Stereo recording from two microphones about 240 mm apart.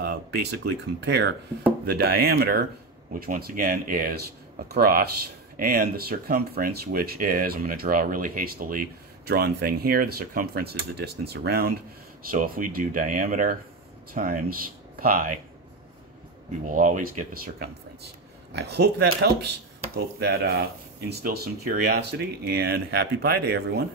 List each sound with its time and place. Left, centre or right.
0.0 s speech: right
16.6 s speech: right